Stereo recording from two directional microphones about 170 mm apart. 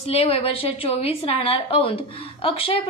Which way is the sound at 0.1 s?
35° left (ahead or behind).